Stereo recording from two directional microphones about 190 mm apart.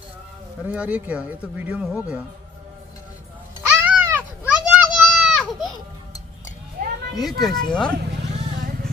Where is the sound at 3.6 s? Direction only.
10° right (ahead or behind).